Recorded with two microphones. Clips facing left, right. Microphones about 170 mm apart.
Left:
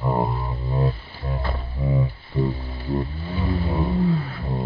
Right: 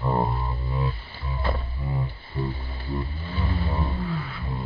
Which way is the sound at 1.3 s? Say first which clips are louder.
Left 5 dB; 50° left (ahead or behind).